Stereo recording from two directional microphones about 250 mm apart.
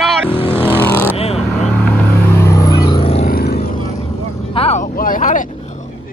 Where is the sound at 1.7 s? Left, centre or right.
Centre; by 3.3 s left.